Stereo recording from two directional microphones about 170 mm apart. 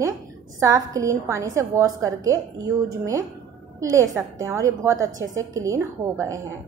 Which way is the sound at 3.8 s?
20° right (ahead or behind).